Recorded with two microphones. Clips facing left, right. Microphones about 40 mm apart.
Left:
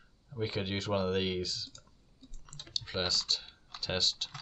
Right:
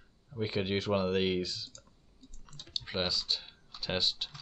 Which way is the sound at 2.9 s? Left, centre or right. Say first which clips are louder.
Even; centre.